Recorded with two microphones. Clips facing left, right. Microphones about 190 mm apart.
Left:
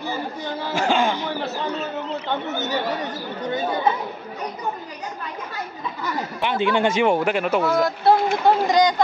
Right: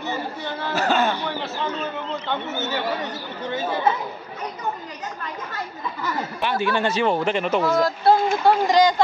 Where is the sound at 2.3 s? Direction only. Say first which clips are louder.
Left 1 dB; 15° left (ahead or behind).